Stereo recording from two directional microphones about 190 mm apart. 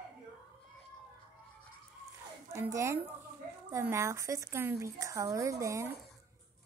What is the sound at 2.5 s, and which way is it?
A woman's voice, 15° right (ahead or behind).